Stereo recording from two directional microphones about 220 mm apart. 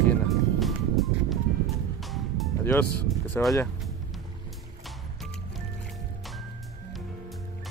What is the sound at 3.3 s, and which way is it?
Speech, centre (ahead or behind).